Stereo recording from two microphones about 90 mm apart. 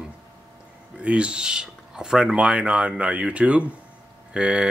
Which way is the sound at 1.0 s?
10° right (ahead or behind).